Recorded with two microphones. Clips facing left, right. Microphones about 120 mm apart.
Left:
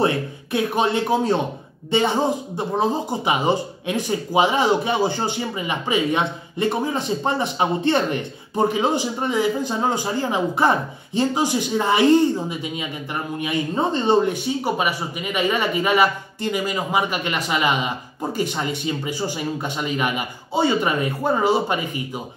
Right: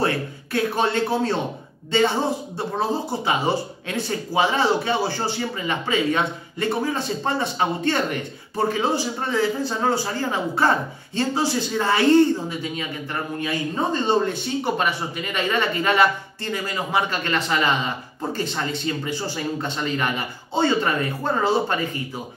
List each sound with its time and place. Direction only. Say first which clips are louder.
0.0 s speech: left 3 dB; 15° left (ahead or behind)